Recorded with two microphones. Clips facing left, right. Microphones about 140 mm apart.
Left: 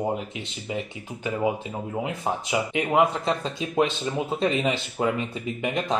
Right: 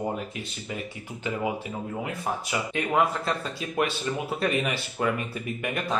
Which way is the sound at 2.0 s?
20° left (ahead or behind).